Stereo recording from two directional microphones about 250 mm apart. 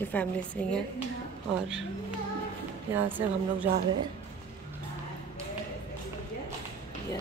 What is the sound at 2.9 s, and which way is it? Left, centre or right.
Speech, centre.